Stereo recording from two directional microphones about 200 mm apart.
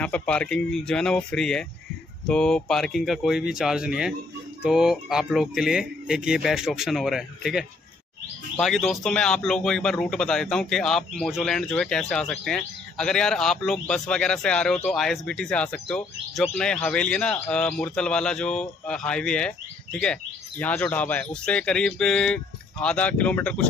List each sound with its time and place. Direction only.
0.0 s speech: 5° left (ahead or behind)